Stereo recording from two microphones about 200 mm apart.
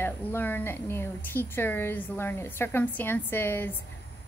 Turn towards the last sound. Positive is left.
turn(degrees=10)  # may be behind; listen again after turning